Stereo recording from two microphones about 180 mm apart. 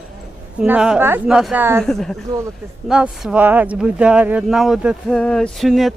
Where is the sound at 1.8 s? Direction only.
5° left (ahead or behind).